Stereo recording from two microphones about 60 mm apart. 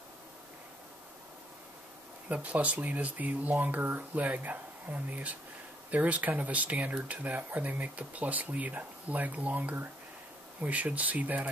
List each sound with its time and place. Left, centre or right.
2.2 s speech: right